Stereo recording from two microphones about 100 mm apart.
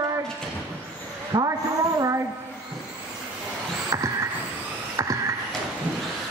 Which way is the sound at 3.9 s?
35° right (ahead or behind).